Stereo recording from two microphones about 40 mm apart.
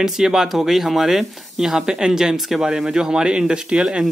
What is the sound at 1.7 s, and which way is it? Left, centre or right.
A man's voice, centre.